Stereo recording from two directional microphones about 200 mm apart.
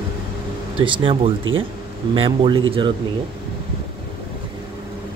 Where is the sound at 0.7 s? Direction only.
25° right (ahead or behind).